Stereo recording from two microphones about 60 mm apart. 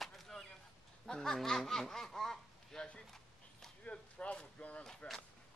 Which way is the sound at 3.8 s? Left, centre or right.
Left.